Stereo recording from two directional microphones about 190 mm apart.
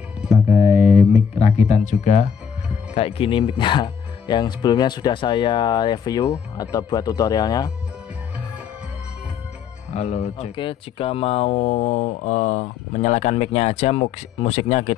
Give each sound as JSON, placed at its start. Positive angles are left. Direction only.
{"t": 0.5, "sound": "a sound", "side_deg": 35}
{"t": 1.1, "sound": "speech", "side_deg": 35}
{"t": 9.9, "sound": "speech", "side_deg": 35}